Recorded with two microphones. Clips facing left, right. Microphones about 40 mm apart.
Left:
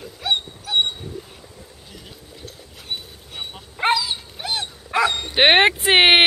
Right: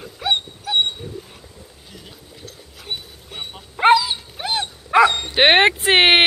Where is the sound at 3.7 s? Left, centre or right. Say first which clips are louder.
Right 6 dB; centre.